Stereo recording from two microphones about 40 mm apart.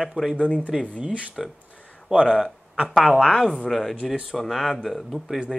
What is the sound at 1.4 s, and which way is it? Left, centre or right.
Speech, centre.